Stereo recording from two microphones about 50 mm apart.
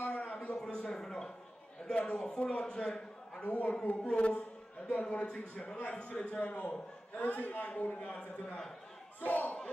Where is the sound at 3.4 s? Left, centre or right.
Left.